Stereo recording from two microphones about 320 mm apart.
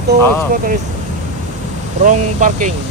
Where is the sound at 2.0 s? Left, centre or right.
Right.